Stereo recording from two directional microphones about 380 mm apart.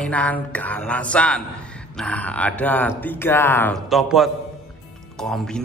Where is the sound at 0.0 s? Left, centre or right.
Centre.